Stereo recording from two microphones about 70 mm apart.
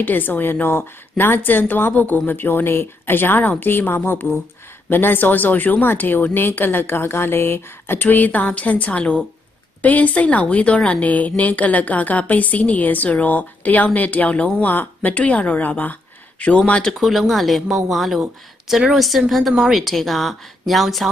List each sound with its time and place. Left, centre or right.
0.0 s speech: left
17.0 s speech: centre